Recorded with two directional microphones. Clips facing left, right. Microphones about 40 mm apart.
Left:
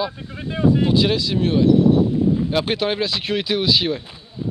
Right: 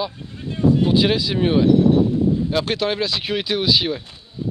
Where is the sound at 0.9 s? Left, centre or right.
Centre.